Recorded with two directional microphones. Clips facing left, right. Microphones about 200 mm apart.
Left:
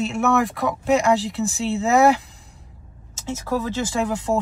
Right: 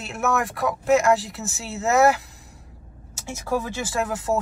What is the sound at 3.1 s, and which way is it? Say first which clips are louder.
Speech: left 1 dB; 10° right (ahead or behind).